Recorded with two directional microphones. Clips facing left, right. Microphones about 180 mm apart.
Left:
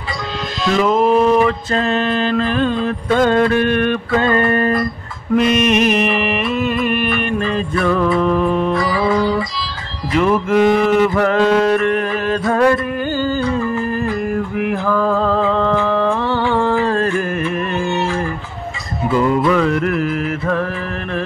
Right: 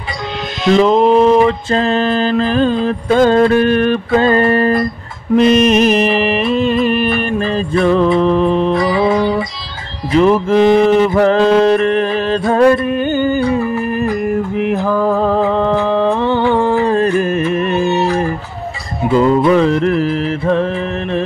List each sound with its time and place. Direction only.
0.7 s mantra: 25° right (ahead or behind)
5.3 s music: 35° right (ahead or behind)
10.1 s mantra: 30° right (ahead or behind)
14.9 s music: 15° right (ahead or behind)
19.0 s music: 25° right (ahead or behind)